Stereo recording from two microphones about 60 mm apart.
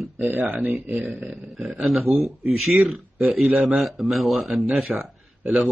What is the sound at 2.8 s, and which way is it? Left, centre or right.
Speech, right.